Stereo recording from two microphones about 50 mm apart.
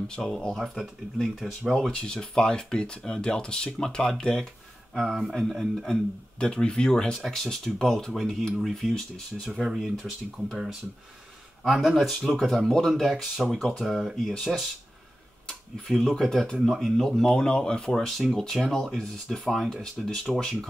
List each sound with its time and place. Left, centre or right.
0.1 s speech: centre
1.3 s speech: centre
1.9 s speech: centre
5.0 s speech: centre
6.4 s speech: centre
7.2 s speech: centre
8.1 s speech: centre
9.5 s speech: centre
11.6 s speech: centre
15.9 s speech: centre
16.2 s speech: centre